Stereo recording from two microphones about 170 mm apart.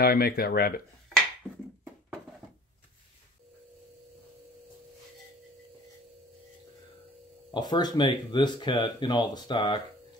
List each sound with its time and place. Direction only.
0.0 s speech: 60° left (ahead or behind)
7.5 s speech: 25° left (ahead or behind)